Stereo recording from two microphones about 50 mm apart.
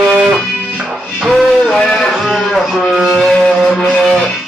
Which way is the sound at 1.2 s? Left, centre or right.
Centre.